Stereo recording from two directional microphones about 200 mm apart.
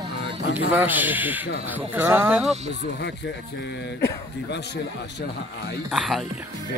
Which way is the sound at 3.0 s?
60° left (ahead or behind).